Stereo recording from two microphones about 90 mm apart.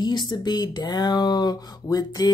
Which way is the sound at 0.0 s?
55° left (ahead or behind).